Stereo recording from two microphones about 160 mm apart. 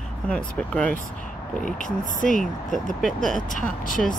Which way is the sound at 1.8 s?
55° left (ahead or behind).